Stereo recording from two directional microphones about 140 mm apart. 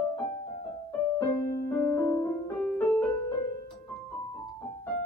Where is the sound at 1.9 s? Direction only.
15° left (ahead or behind).